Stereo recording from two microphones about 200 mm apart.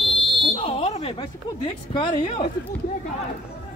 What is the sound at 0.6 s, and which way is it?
Smoke detector, 30° left (ahead or behind).